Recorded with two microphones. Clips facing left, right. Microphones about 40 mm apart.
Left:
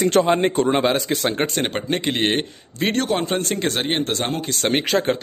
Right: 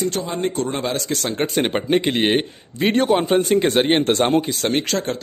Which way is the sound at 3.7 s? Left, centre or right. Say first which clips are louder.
Right 5 dB; right.